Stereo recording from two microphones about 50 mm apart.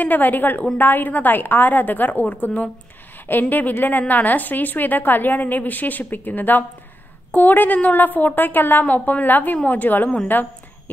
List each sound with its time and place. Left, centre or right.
0.0 s a woman's voice: left